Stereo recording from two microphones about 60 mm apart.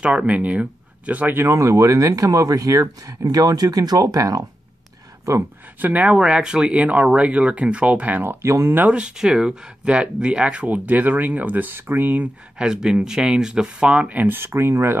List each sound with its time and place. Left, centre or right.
0.0 s speech: right
1.3 s speech: right
5.8 s speech: right
6.1 s speech: centre
8.3 s speech: right
8.8 s speech: centre; by 12.3 s right
12.5 s speech: centre
14.1 s speech: right